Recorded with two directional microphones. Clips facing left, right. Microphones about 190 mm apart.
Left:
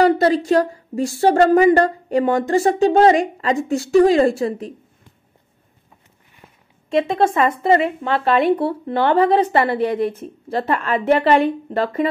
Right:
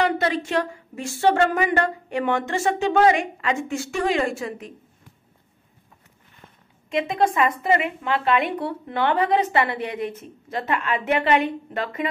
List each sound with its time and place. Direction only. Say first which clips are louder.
0.0 s a woman's voice: left 7 dB; 35° left (ahead or behind)
6.9 s a woman's voice: left 5 dB; 30° left (ahead or behind)